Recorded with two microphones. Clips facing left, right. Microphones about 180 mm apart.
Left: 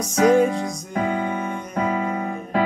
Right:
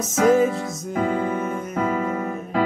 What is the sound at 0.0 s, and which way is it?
Music, centre (ahead or behind).